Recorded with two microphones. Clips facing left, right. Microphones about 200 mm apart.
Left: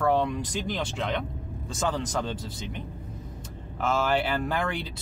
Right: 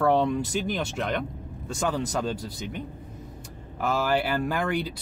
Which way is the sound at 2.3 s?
25° left (ahead or behind).